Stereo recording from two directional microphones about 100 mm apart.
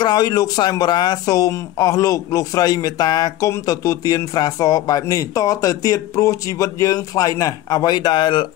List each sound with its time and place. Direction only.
0.0 s speech: 45° left (ahead or behind)